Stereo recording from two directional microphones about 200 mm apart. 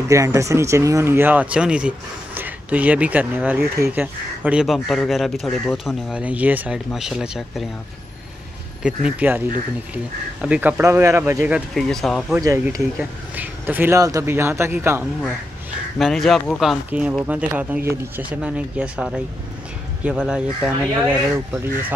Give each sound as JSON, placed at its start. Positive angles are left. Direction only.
{"t": 0.1, "sound": "speech", "side_deg": -15}
{"t": 8.8, "sound": "speech", "side_deg": -5}
{"t": 10.4, "sound": "speech", "side_deg": -5}
{"t": 12.4, "sound": "speech", "side_deg": -15}
{"t": 16.0, "sound": "speech", "side_deg": 0}